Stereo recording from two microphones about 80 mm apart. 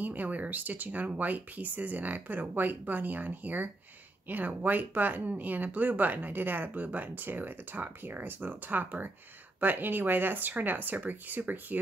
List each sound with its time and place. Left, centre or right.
0.0 s speech: right